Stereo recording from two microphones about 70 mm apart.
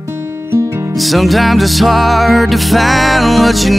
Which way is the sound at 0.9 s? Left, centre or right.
Centre.